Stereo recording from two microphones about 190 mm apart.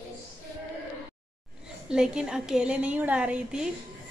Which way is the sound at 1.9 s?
5° right (ahead or behind).